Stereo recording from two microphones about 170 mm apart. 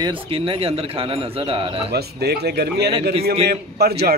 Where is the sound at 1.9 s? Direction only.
70° right (ahead or behind).